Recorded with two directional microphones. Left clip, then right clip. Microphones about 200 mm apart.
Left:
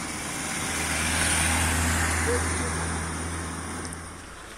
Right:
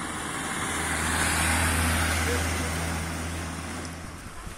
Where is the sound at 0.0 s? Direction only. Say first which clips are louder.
Right 1 dB; 45° left (ahead or behind); by 1.2 s 25° left (ahead or behind).